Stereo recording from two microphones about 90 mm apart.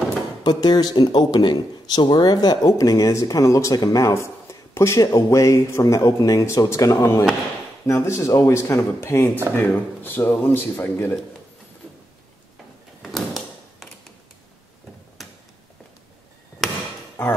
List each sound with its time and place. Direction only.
0.4 s speech: 50° left (ahead or behind)
2.6 s speech: 40° left (ahead or behind); by 11.1 s 25° left (ahead or behind)
13.0 s a sound: centre (ahead or behind)